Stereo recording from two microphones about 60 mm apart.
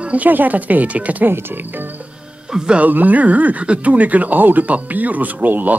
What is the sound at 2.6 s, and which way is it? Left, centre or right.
Speech, right.